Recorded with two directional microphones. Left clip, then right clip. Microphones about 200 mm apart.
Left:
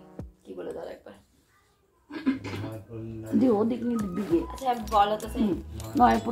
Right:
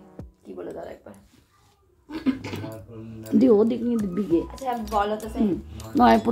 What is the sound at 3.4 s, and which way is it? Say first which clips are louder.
Speech: right 6 dB; 30° right (ahead or behind).